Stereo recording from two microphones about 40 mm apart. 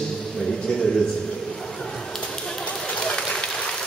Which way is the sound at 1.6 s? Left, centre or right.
Centre.